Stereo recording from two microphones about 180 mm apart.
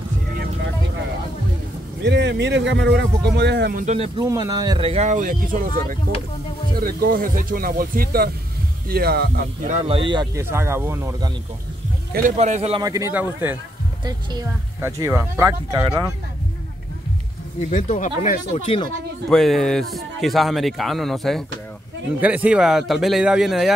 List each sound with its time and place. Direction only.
2.0 s speech: 75° right (ahead or behind)
3.8 s speech: 35° right (ahead or behind)
4.2 s speech: 20° right (ahead or behind); by 9.7 s 60° right (ahead or behind)
9.7 s speech: 35° right (ahead or behind)
10.5 s speech: 15° right (ahead or behind)
12.1 s speech: 50° right (ahead or behind)
12.8 s speech: 20° right (ahead or behind)
17.6 s speech: 45° left (ahead or behind)
19.3 s a man's voice: centre (ahead or behind)